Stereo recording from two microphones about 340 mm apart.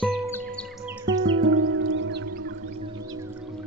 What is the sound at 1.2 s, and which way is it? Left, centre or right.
Music, right.